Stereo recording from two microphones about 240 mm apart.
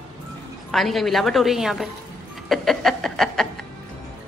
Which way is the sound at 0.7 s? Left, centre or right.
Centre.